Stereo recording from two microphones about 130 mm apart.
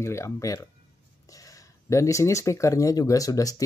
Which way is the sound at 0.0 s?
20° left (ahead or behind).